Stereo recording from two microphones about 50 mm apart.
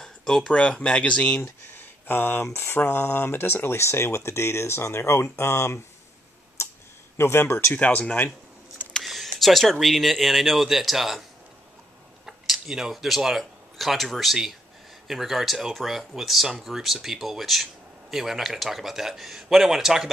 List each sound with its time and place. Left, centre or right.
0.0 s a sound: centre
0.5 s speech: left
1.8 s a sound: left
2.5 s speech: left
6.6 s computer keyboard: left
7.2 s speech: left
7.7 s speech: left
9.0 s a sound: centre
9.4 s speech: centre
12.3 s speech: centre